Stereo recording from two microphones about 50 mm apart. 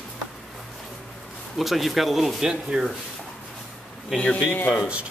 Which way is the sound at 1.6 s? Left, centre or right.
Centre.